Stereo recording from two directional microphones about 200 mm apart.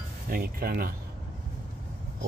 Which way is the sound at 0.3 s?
45° right (ahead or behind).